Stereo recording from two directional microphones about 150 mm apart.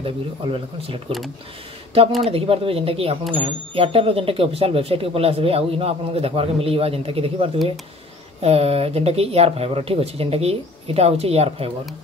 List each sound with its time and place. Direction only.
0.0 s speech: 40° right (ahead or behind)
2.2 s speech: 40° right (ahead or behind)